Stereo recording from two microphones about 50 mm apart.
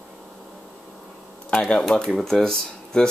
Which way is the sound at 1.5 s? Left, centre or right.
Left.